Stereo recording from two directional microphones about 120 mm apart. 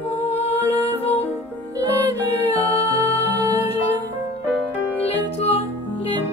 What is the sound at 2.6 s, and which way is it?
Music, 55° left (ahead or behind).